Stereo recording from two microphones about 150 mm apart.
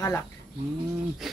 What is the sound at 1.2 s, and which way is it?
Speech, centre (ahead or behind).